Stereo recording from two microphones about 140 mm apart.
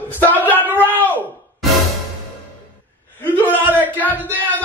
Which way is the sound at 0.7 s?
10° left (ahead or behind).